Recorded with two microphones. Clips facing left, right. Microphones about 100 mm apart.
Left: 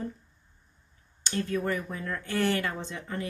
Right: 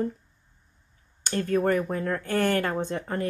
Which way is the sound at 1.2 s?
50° right (ahead or behind).